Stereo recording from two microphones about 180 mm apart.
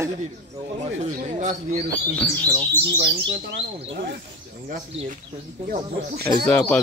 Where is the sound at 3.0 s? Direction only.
30° right (ahead or behind).